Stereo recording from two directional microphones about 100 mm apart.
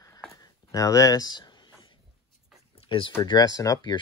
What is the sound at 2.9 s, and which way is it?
Speech, 60° left (ahead or behind).